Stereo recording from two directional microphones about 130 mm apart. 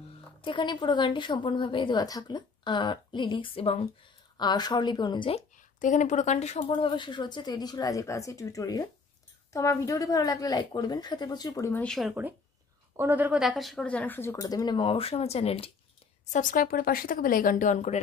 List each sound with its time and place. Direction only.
0.4 s a woman's voice: 40° left (ahead or behind)
4.4 s a woman's voice: 35° left (ahead or behind)
5.8 s speech: 75° left (ahead or behind)
6.7 s a woman's voice: 40° left (ahead or behind)
11.7 s a woman's voice: 5° left (ahead or behind)
12.1 s a woman's voice: 15° right (ahead or behind)
13.4 s a woman's voice: centre (ahead or behind)
14.3 s speech: 30° left (ahead or behind); by 15.7 s 50° left (ahead or behind)
16.3 s speech: 85° left; by 18.0 s 60° left (ahead or behind)